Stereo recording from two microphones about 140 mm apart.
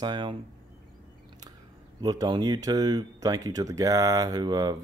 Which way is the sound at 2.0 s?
30° right (ahead or behind).